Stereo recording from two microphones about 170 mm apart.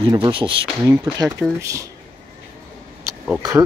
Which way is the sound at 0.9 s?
15° right (ahead or behind).